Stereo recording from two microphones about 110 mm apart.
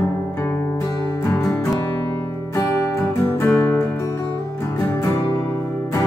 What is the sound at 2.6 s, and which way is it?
Music, 25° left (ahead or behind).